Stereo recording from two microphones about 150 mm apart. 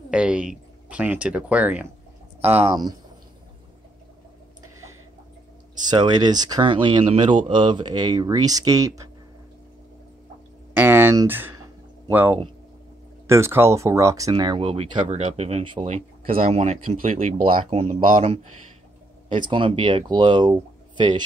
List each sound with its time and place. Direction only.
0.1 s speech: 5° right (ahead or behind)
5.9 s speech: 30° right (ahead or behind)
10.7 s a sound: 15° right (ahead or behind)
12.1 s speech: 10° right (ahead or behind)
14.3 s speech: 35° right (ahead or behind)